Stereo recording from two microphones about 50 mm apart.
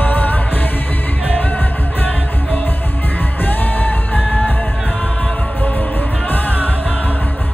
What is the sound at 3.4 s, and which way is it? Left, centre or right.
Music, left.